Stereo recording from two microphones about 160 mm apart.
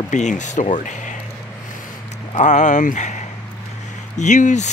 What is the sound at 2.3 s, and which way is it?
Speech, 50° left (ahead or behind).